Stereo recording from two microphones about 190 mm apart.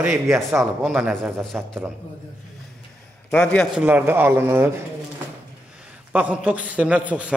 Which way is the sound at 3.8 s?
10° right (ahead or behind).